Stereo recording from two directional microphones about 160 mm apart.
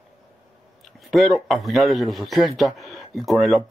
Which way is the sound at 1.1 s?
Centre (ahead or behind).